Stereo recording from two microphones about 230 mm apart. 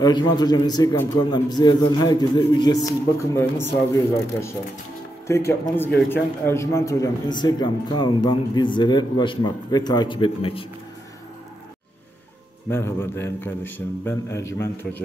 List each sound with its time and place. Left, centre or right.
0.0 s a man's voice: centre
12.6 s a man's voice: centre